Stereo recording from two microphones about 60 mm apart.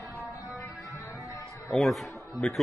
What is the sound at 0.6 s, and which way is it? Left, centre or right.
Music, left.